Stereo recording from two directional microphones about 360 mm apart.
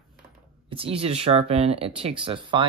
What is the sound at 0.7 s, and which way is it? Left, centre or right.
Speech, centre.